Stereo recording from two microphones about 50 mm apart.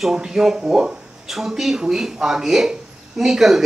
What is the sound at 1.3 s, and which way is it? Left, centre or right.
A man's voice, centre.